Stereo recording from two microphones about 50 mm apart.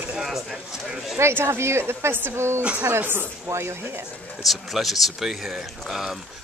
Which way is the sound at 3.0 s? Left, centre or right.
Right.